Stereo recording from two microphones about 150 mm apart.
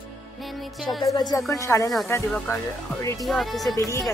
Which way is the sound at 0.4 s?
Centre (ahead or behind).